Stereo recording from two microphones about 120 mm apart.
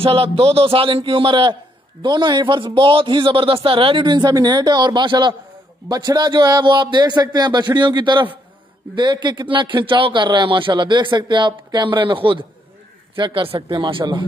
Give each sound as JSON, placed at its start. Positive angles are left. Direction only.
{"t": 0.0, "sound": "a man's voice", "side_deg": -50}